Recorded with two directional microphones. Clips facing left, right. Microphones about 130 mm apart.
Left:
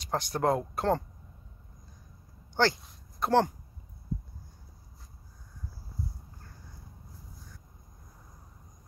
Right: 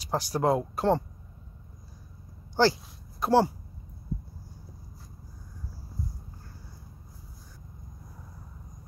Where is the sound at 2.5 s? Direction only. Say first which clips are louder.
Right 4 dB; 10° right (ahead or behind).